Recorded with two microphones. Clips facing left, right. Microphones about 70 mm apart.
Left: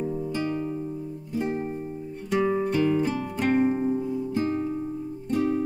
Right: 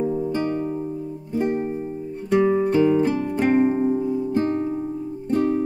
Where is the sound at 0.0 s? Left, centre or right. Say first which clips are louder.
Right 6 dB; centre.